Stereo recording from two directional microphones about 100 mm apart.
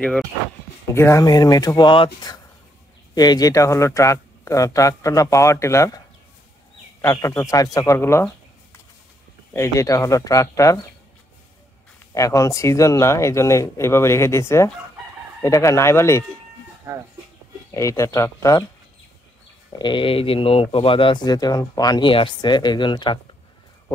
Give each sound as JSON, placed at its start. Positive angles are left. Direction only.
{"t": 0.9, "sound": "speech", "side_deg": 25}
{"t": 1.2, "sound": "speech", "side_deg": 40}
{"t": 7.0, "sound": "speech", "side_deg": 30}
{"t": 9.6, "sound": "speech", "side_deg": 30}
{"t": 12.1, "sound": "speech", "side_deg": 35}
{"t": 16.9, "sound": "speech", "side_deg": -30}
{"t": 17.6, "sound": "speech", "side_deg": 30}
{"t": 19.8, "sound": "speech", "side_deg": 55}
{"t": 22.0, "sound": "speech", "side_deg": 55}